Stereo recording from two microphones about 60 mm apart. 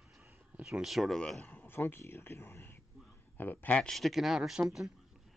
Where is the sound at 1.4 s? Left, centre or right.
Left.